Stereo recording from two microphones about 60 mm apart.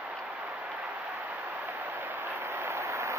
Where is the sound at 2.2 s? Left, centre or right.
Right.